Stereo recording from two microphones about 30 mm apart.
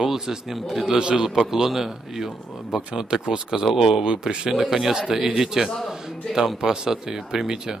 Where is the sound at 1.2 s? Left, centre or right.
Centre.